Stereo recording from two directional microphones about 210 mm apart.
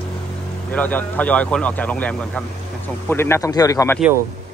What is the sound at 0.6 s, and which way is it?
A man's voice, 10° left (ahead or behind).